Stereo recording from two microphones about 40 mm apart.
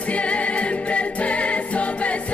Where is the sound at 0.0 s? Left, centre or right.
Left.